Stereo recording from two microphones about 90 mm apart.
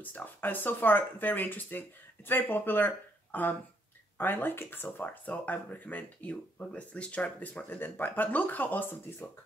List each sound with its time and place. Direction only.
0.0 s speech: 20° left (ahead or behind)